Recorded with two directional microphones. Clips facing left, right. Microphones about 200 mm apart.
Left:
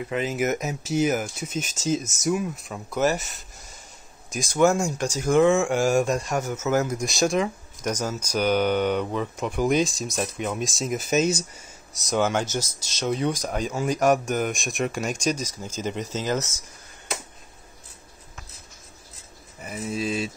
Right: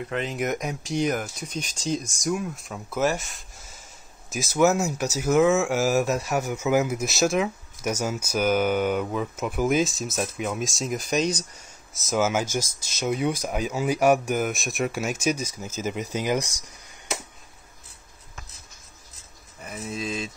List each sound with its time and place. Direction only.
0.0 s speech: 5° left (ahead or behind); by 16.6 s 15° right (ahead or behind)
19.6 s speech: 5° left (ahead or behind)